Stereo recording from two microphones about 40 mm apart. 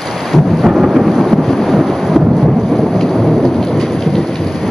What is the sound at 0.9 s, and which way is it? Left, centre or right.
Thunder, centre.